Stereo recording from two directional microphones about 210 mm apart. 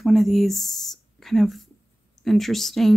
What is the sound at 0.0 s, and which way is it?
Speech, centre (ahead or behind).